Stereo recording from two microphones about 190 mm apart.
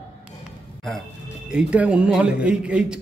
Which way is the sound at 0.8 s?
Centre (ahead or behind).